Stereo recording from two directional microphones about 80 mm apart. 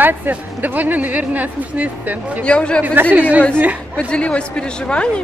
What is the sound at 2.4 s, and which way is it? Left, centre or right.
Speech, centre.